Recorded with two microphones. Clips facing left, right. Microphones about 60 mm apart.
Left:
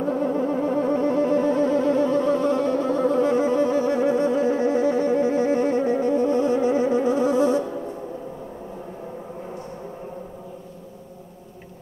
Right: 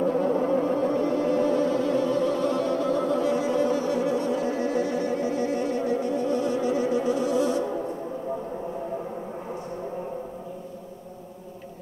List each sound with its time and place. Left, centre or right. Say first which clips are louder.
0.0 s music: even; left